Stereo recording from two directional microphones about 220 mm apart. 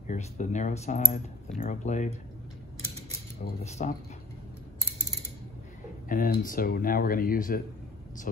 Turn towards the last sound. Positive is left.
turn(degrees=40)  # may be behind; listen again after turning